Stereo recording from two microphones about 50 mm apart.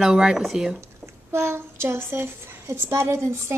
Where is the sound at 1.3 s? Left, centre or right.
Right.